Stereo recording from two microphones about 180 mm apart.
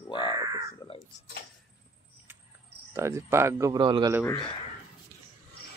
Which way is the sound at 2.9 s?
15° right (ahead or behind).